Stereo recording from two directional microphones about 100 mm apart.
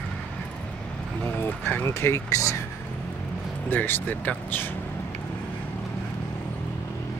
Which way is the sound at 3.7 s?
20° left (ahead or behind).